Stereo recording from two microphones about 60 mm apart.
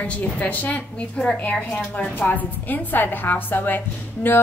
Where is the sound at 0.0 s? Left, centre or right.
Left.